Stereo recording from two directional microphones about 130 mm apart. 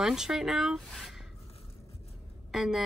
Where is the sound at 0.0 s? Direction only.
5° right (ahead or behind).